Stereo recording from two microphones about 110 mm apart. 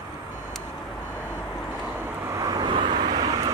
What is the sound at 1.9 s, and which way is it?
Vehicle, 25° right (ahead or behind).